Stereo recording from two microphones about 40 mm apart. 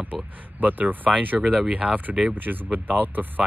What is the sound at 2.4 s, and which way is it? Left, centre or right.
Speech, right.